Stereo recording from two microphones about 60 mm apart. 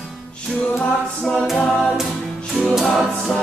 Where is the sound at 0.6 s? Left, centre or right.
Centre.